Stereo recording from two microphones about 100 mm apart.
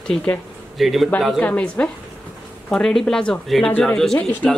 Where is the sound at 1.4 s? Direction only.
15° left (ahead or behind).